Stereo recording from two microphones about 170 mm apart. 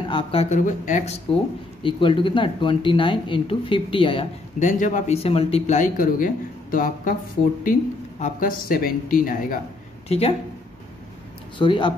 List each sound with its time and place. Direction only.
0.1 s speech: 35° left (ahead or behind)
0.6 s speech: 50° left (ahead or behind)
1.8 s speech: 30° left (ahead or behind)
4.6 s speech: 50° left (ahead or behind)
8.2 s speech: 55° left (ahead or behind)
10.0 s speech: 35° left (ahead or behind)
11.5 s speech: 30° left (ahead or behind)